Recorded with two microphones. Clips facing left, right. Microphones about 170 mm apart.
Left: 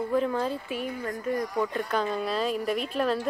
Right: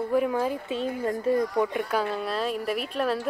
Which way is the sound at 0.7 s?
25° right (ahead or behind).